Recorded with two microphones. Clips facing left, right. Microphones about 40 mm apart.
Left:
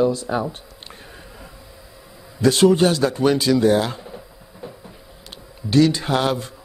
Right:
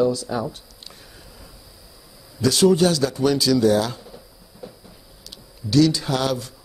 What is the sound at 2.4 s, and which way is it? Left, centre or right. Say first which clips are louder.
A man's voice: left 2 dB; left.